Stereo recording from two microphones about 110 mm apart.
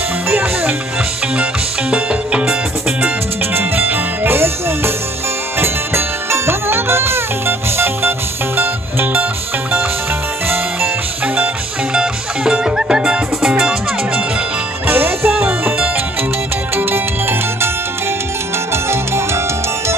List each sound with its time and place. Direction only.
0.3 s music: 15° right (ahead or behind)
3.5 s music: 20° right (ahead or behind)
11.9 s music: 5° right (ahead or behind)
14.9 s music: 20° right (ahead or behind)
18.7 s music: 25° right (ahead or behind)